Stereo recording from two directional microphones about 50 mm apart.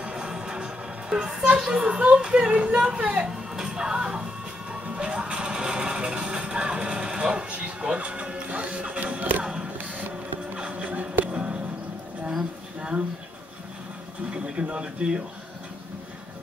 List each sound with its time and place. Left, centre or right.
0.0 s music: centre
1.1 s speech: right
4.8 s music: right
9.4 s music: centre
9.8 s printer: right
10.5 s a sound: right
14.3 s speech: right